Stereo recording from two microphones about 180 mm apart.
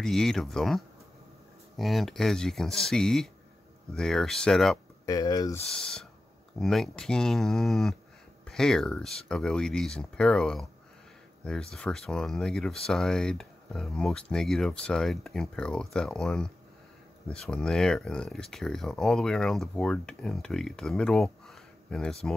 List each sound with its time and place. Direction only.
0.0 s speech: centre (ahead or behind)
5.0 s speech: 20° left (ahead or behind)
5.7 s speech: 5° left (ahead or behind)